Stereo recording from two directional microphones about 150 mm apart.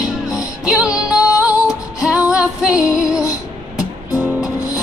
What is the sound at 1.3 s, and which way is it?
Female singing, 5° right (ahead or behind).